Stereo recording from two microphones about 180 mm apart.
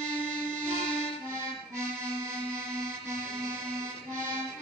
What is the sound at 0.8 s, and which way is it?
Accordion, 30° left (ahead or behind).